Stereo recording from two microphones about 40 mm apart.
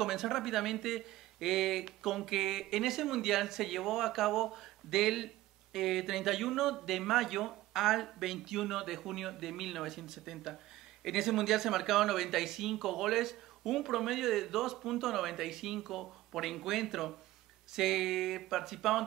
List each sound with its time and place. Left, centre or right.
0.0 s speech: centre